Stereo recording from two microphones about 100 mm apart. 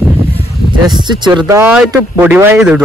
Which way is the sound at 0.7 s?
50° right (ahead or behind).